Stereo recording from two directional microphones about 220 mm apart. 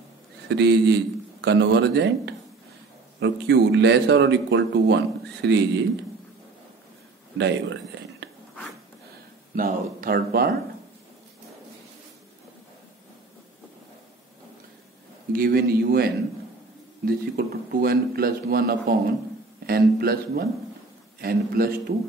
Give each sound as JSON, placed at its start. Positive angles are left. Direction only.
{"t": 0.5, "sound": "speech", "side_deg": -50}
{"t": 7.3, "sound": "speech", "side_deg": -55}
{"t": 9.6, "sound": "speech", "side_deg": -40}
{"t": 15.3, "sound": "speech", "side_deg": -40}